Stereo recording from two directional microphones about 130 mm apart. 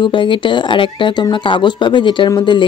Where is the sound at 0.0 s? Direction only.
40° left (ahead or behind).